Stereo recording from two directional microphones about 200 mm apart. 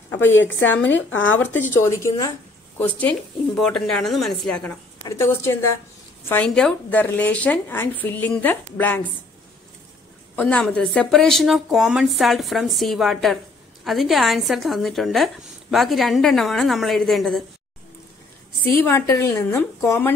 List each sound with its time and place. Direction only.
0.8 s speech: 70° left (ahead or behind)
1.4 s a woman's voice: 10° left (ahead or behind)
10.3 s a woman's voice: 5° left (ahead or behind)
18.9 s a woman's voice: 10° left (ahead or behind)